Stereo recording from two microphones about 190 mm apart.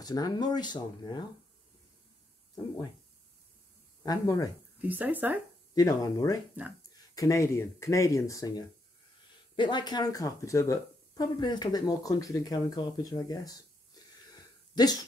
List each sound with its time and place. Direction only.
0.0 s speech: 20° left (ahead or behind)
4.0 s speech: 20° left (ahead or behind)
4.8 s speech: 10° right (ahead or behind)
5.8 s speech: 20° left (ahead or behind)